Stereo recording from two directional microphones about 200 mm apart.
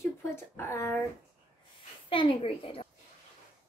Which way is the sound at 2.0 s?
25° left (ahead or behind).